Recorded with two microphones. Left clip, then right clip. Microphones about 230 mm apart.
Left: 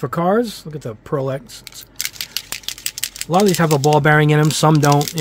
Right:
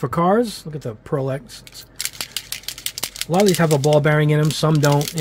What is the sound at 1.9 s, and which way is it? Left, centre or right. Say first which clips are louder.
Rattle: left 2 dB; centre.